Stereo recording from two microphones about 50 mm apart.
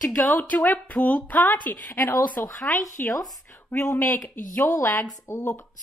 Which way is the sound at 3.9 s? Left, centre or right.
Left.